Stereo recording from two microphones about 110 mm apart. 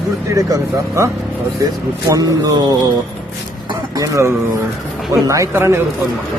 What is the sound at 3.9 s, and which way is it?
Speech, 30° right (ahead or behind).